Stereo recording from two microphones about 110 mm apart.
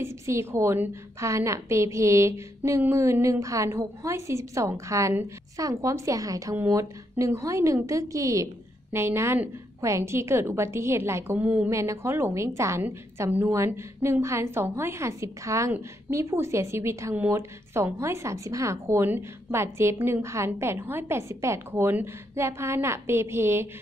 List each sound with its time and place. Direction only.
0.0 s a woman's voice: 25° right (ahead or behind)
11.7 s a woman's voice: 25° right (ahead or behind)